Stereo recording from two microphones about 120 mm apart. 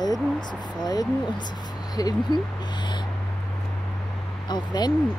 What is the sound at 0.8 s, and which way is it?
Speech, 35° left (ahead or behind).